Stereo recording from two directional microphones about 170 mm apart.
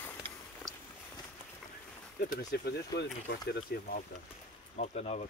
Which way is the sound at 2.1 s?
65° left (ahead or behind).